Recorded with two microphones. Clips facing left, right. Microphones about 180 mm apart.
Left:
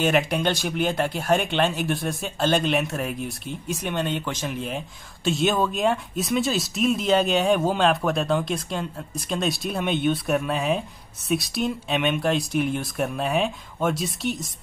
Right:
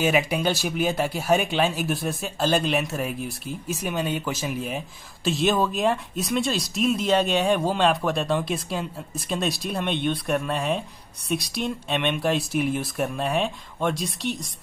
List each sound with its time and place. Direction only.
0.0 s speech: 5° right (ahead or behind)